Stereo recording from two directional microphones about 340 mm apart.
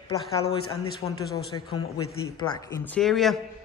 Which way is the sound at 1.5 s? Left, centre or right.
Centre.